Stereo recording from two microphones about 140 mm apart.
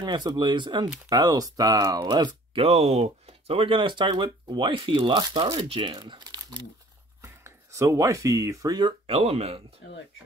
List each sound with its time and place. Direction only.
0.0 s speech: 30° right (ahead or behind)
2.6 s speech: 45° right (ahead or behind)
7.2 s speech: 20° right (ahead or behind)
9.0 s speech: 45° right (ahead or behind)